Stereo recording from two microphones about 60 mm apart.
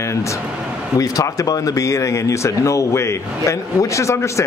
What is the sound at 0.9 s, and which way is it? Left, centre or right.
Speech, left.